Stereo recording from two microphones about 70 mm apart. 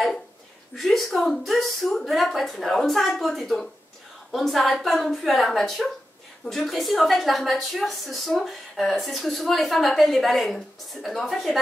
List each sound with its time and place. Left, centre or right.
0.7 s a woman's voice: centre